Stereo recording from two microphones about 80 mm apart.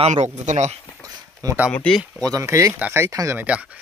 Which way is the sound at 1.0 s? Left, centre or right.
Right.